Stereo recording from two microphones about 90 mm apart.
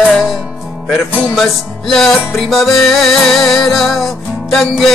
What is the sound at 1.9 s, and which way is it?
Music, 5° left (ahead or behind).